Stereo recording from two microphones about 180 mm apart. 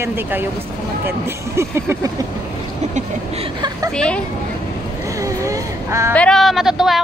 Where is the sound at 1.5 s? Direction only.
15° right (ahead or behind).